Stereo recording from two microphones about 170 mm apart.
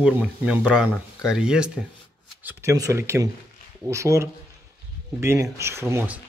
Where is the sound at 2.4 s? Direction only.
15° right (ahead or behind).